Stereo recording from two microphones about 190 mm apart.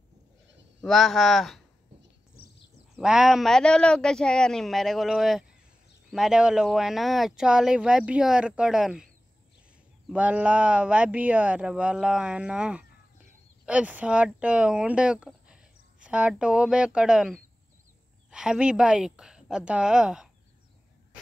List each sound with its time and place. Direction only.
0.7 s speech: centre (ahead or behind)
2.3 s a sound: 55° left (ahead or behind)
3.0 s speech: 5° right (ahead or behind)
10.0 s speech: 5° right (ahead or behind)